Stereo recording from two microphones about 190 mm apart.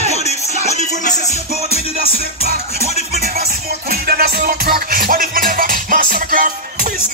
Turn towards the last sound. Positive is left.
turn(degrees=-45)  # may be behind; listen again after turning